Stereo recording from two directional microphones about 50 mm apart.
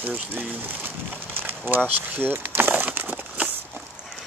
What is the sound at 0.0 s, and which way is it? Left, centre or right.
Speech, right.